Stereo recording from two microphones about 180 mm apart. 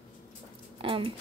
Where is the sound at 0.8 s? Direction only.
30° right (ahead or behind).